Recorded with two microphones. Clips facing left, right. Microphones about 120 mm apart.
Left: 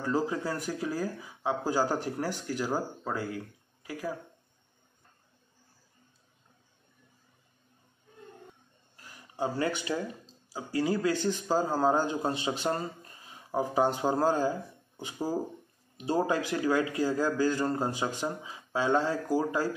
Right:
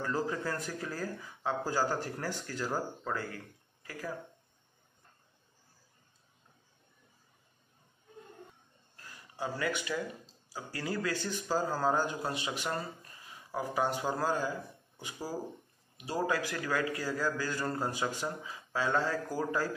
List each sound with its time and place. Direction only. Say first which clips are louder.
0.0 s speech: left 4 dB; 15° left (ahead or behind)
9.4 s a man's voice: left 4 dB; 30° left (ahead or behind)
10.5 s a man's voice: left 8 dB; 15° left (ahead or behind)